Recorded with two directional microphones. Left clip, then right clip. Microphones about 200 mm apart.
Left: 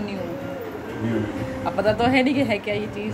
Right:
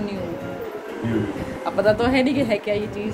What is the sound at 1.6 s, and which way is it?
A woman's voice, 25° right (ahead or behind).